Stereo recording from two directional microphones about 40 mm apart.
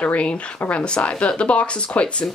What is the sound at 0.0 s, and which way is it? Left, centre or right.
Speech, left.